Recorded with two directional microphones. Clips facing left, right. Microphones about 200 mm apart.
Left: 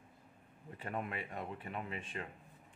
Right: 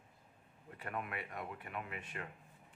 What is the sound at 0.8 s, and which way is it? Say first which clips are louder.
Speech: left 2 dB; 30° left (ahead or behind).